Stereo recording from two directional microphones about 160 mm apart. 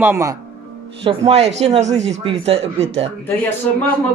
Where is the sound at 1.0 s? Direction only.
40° right (ahead or behind).